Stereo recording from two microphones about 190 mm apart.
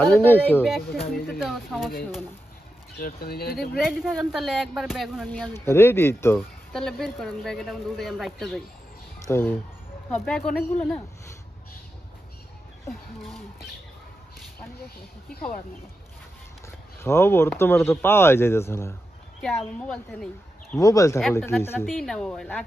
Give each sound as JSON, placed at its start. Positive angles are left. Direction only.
{"t": 0.0, "sound": "speech", "side_deg": 10}
{"t": 0.7, "sound": "speech", "side_deg": 0}
{"t": 3.0, "sound": "speech", "side_deg": 50}
{"t": 3.5, "sound": "speech", "side_deg": 0}
{"t": 6.7, "sound": "speech", "side_deg": 0}
{"t": 9.2, "sound": "speech", "side_deg": 10}
{"t": 12.8, "sound": "a sound", "side_deg": 0}
{"t": 17.0, "sound": "speech", "side_deg": 15}
{"t": 20.8, "sound": "speech", "side_deg": 15}
{"t": 21.2, "sound": "speech", "side_deg": 0}
{"t": 21.5, "sound": "speech", "side_deg": 10}
{"t": 21.8, "sound": "speech", "side_deg": 0}